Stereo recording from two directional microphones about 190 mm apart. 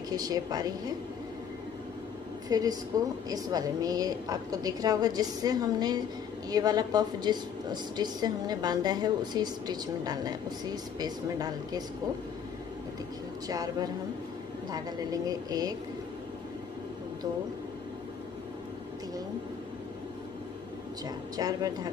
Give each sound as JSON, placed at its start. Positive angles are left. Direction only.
{"t": 0.1, "sound": "a woman's voice", "side_deg": -20}
{"t": 2.5, "sound": "a woman's voice", "side_deg": -20}
{"t": 13.5, "sound": "a woman's voice", "side_deg": -20}
{"t": 21.4, "sound": "a woman's voice", "side_deg": -20}